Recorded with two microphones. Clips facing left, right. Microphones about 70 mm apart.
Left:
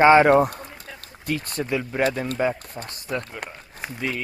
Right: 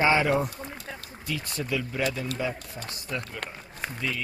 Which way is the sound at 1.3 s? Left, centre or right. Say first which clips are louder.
Left 5 dB; left.